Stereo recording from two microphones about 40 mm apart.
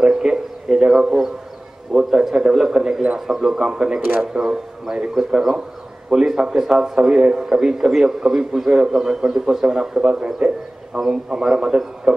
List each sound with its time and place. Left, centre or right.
0.0 s a sound: centre
2.0 s a man's voice: centre
6.1 s a man's voice: centre